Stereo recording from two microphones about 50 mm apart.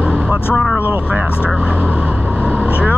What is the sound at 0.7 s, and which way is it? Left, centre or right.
Speech, right.